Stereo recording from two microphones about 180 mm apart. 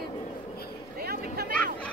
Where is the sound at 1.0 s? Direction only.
60° right (ahead or behind).